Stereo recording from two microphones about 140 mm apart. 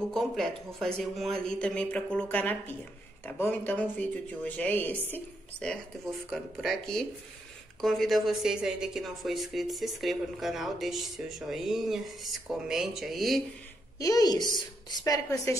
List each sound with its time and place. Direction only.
0.1 s speech: 5° left (ahead or behind)
13.9 s a woman's voice: 25° left (ahead or behind)